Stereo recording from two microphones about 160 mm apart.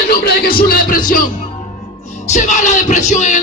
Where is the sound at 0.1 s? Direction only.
80° left; by 1.2 s 60° left (ahead or behind).